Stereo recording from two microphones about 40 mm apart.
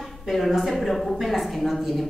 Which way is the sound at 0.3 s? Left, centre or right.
Centre.